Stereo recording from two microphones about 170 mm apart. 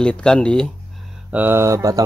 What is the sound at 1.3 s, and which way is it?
Speech, 10° right (ahead or behind).